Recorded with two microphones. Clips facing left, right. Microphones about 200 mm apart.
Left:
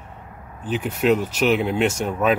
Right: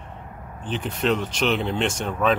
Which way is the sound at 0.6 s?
10° left (ahead or behind).